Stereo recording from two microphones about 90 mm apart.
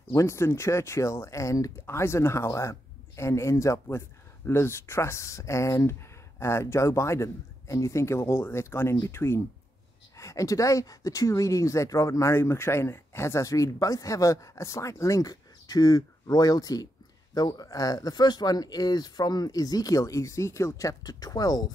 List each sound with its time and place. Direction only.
0.1 s speech: 35° left (ahead or behind)